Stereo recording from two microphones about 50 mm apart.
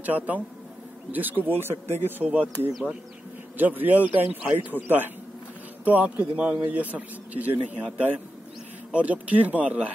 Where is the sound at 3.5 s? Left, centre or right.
Right.